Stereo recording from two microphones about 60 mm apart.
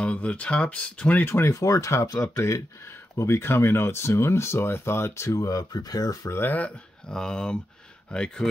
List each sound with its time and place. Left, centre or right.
0.0 s speech: left
1.2 s speech: left
1.5 s speech: left
3.2 s speech: left
6.3 s speech: left
7.1 s speech: centre